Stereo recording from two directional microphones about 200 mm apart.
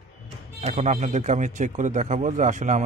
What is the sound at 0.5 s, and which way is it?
A man's voice, 30° right (ahead or behind).